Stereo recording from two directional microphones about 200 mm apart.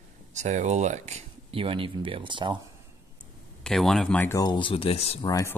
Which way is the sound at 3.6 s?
Centre (ahead or behind).